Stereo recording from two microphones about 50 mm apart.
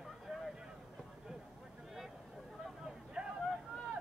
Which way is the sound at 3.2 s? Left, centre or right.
Centre.